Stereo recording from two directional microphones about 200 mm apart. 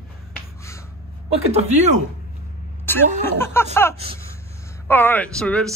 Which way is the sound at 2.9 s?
10° left (ahead or behind).